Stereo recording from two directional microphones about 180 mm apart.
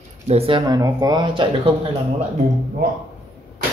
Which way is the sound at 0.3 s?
30° right (ahead or behind).